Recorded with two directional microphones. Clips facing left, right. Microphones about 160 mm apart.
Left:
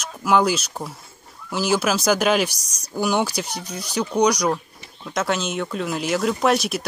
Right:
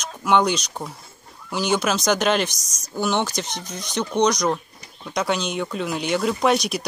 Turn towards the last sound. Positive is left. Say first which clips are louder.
# even
turn(degrees=0)  # may be behind; listen again after turning